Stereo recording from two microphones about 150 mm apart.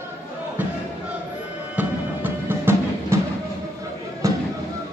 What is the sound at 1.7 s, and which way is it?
Music, 15° right (ahead or behind).